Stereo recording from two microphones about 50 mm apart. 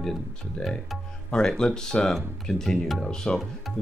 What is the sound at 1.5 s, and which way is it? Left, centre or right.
Speech, centre.